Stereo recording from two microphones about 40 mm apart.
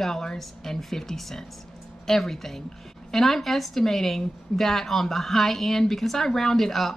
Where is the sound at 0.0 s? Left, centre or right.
Centre.